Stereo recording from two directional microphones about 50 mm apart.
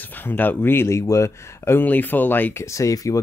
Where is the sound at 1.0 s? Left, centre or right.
Left.